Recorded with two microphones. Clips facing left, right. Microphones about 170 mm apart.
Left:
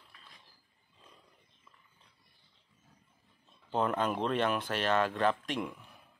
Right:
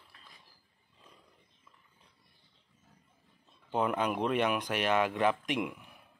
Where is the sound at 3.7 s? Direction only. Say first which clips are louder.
Even; 10° right (ahead or behind).